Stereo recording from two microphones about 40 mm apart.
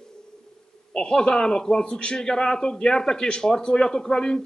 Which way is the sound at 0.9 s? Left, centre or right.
Left.